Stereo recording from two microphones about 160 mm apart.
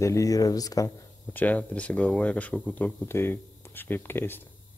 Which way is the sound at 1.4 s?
10° left (ahead or behind).